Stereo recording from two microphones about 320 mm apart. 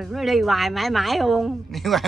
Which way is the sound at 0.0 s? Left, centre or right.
Centre.